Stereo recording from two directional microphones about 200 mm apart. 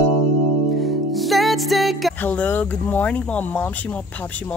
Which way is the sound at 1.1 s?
Centre (ahead or behind).